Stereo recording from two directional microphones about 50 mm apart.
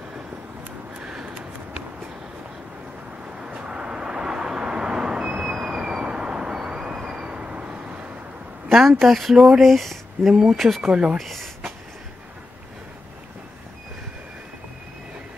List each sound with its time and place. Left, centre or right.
3.3 s vehicle: centre
8.7 s a woman's voice: centre
10.9 s speech: right
11.1 s a woman's voice: centre